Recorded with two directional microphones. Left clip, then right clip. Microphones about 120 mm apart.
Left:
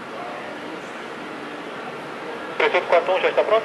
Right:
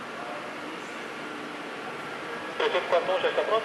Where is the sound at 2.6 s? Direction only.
20° left (ahead or behind).